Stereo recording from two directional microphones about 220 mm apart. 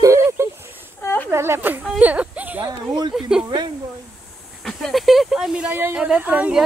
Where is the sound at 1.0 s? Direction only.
10° left (ahead or behind).